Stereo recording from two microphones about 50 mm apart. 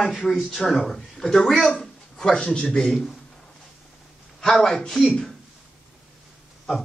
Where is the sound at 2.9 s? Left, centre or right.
Centre.